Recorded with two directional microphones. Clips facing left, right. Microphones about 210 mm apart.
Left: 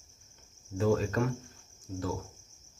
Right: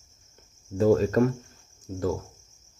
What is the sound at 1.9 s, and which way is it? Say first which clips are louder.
Cricket: right 3 dB; 45° right (ahead or behind).